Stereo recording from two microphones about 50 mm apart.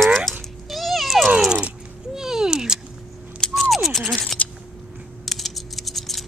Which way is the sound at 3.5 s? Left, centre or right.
Centre.